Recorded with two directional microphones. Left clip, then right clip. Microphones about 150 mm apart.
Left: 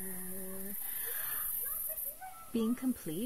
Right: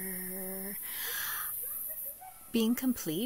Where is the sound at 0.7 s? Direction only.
20° right (ahead or behind).